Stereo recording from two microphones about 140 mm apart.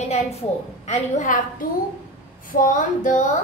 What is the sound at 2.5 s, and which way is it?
Female singing, 70° left (ahead or behind).